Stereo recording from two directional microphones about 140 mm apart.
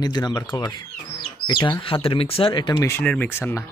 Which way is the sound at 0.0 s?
30° left (ahead or behind).